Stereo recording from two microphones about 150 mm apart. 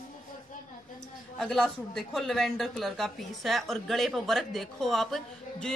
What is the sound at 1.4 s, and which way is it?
A woman's voice, centre (ahead or behind).